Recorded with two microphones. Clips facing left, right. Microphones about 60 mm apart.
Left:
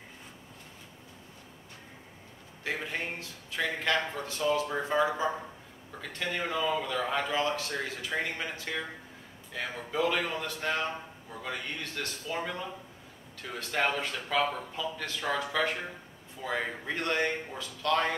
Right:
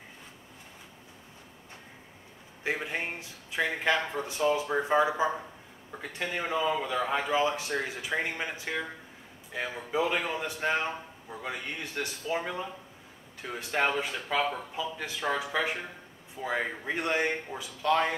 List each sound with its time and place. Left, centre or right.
2.6 s a man's voice: centre